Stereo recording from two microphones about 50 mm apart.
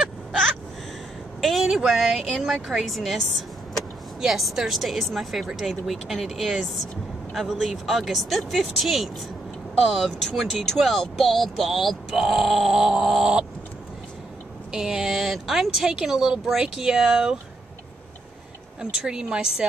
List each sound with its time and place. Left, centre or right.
1.4 s vehicle: centre
1.9 s a sound: centre
2.8 s speech: centre
4.2 s a sound: centre
12.7 s speech: centre
14.7 s speech: centre
18.8 s speech: centre